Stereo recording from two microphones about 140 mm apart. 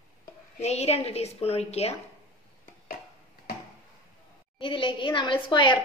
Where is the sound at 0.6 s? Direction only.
50° left (ahead or behind).